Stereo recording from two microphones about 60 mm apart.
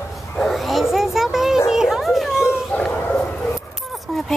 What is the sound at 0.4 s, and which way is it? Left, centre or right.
Bow-wow, centre.